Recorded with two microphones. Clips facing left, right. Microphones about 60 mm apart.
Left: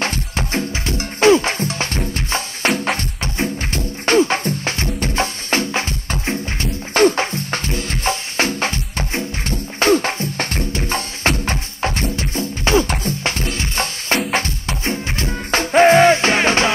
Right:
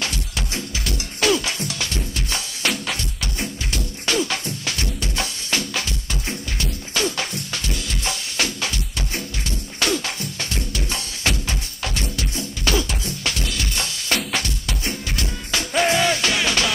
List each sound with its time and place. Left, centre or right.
0.0 s music: left